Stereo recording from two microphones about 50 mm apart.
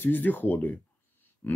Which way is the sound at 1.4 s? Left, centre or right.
Left.